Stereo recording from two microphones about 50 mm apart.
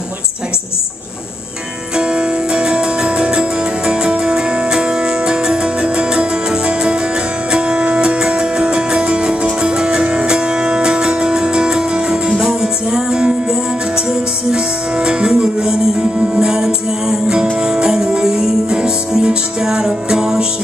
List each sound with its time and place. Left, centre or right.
2.0 s music: centre